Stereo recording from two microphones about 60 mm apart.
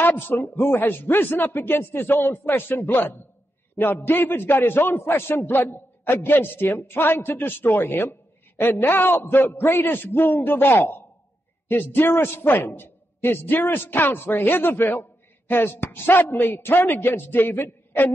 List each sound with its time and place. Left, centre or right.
0.0 s a man's voice: left